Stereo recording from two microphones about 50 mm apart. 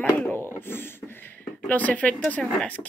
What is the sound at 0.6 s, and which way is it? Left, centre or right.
Speech, left.